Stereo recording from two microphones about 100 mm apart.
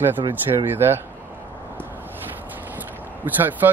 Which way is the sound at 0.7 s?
20° right (ahead or behind).